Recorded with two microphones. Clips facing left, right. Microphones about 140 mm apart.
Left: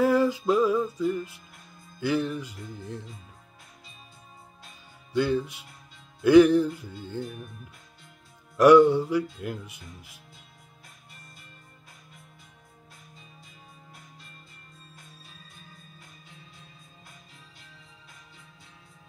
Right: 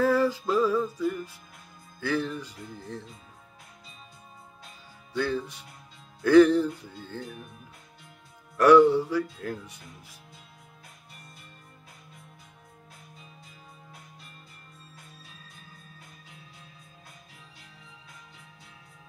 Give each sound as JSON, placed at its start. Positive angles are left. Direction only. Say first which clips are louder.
{"t": 0.0, "sound": "music", "louder": "left 2 dB", "side_deg": 15}
{"t": 2.0, "sound": "speech", "louder": "left 2 dB", "side_deg": 15}
{"t": 5.1, "sound": "speech", "louder": "left 4 dB", "side_deg": 15}
{"t": 8.5, "sound": "speech", "louder": "left 1 dB", "side_deg": 15}